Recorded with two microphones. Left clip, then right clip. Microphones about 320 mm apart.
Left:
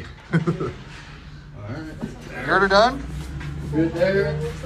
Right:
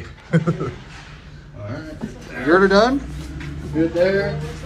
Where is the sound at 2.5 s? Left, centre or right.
Centre.